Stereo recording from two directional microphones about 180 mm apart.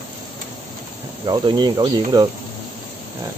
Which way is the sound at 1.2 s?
25° right (ahead or behind).